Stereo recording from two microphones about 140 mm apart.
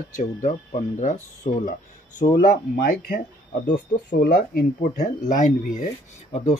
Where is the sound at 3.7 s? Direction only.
90° left.